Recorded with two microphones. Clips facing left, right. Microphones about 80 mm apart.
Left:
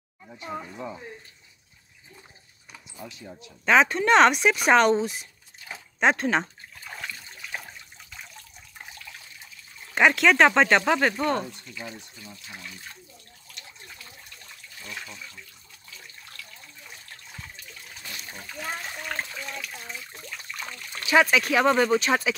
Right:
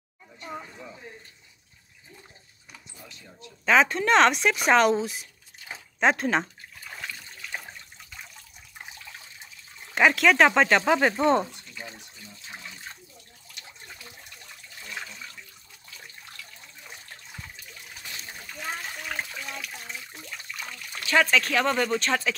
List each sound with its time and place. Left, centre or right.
0.4 s speech: centre
3.6 s speech: centre
5.9 s a sound: centre
8.8 s water: right
9.9 s speech: centre
11.1 s speech: right
18.5 s water: centre
20.5 s speech: centre